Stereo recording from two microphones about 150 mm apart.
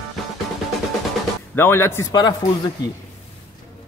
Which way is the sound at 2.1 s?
25° left (ahead or behind).